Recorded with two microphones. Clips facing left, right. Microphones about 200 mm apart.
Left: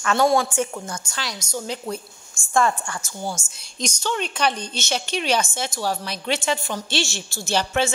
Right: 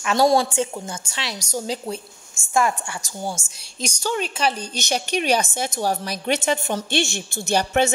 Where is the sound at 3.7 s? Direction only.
10° right (ahead or behind).